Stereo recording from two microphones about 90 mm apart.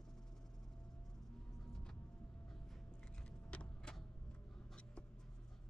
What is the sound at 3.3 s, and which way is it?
Vehicle, 10° left (ahead or behind).